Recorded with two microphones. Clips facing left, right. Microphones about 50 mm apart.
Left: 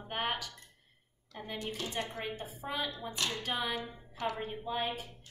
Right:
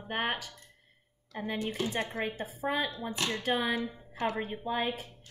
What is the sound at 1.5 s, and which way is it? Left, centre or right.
Speech, right.